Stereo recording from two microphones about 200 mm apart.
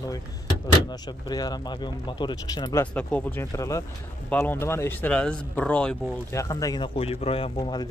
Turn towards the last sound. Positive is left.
turn(degrees=25)  # may be behind; listen again after turning